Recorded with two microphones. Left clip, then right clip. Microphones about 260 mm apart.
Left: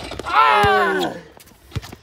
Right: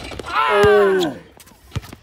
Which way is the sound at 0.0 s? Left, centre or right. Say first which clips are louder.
Left 1 dB; centre.